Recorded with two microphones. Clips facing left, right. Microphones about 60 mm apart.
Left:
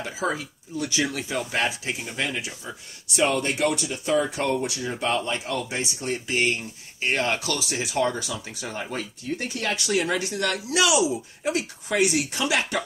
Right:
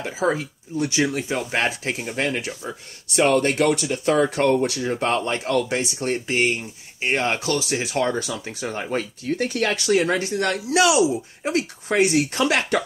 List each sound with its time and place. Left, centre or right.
0.2 s speech: right
5.5 s speech: right
6.0 s speech: right
9.4 s speech: right
12.4 s speech: right